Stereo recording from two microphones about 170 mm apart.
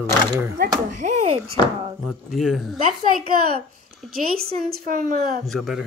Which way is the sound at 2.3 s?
Centre (ahead or behind).